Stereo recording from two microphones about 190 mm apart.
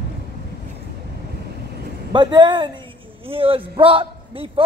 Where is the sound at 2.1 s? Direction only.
25° right (ahead or behind).